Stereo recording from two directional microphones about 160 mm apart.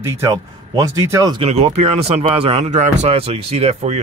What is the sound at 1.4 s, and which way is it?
Speech, 40° right (ahead or behind).